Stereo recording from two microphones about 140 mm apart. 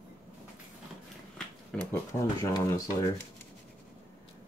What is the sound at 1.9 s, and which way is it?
Speech, 20° left (ahead or behind).